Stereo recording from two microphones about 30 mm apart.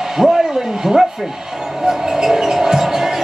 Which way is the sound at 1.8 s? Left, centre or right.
Centre.